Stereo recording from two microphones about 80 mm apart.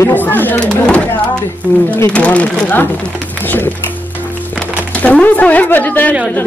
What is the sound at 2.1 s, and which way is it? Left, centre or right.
Speech, centre.